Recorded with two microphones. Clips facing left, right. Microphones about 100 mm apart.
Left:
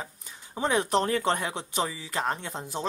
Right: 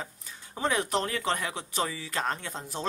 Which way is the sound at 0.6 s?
30° left (ahead or behind).